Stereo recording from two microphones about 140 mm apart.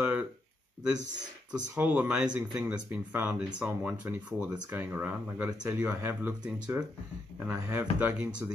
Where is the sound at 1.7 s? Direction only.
10° right (ahead or behind).